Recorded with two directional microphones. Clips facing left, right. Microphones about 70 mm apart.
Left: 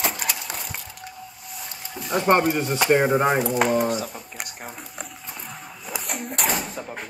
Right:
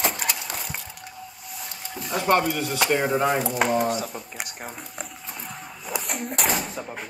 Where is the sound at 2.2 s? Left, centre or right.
Left.